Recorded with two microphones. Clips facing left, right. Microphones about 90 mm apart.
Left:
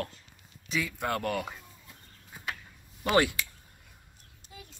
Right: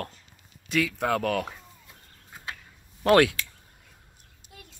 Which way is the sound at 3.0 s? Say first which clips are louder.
Right 6 dB; 75° right (ahead or behind).